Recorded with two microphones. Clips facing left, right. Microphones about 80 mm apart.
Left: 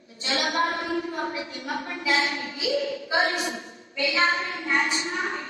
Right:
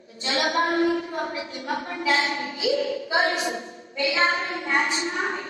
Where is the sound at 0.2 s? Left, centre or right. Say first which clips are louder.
Right 2 dB; right.